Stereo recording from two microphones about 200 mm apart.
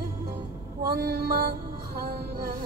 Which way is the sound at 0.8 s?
50° right (ahead or behind).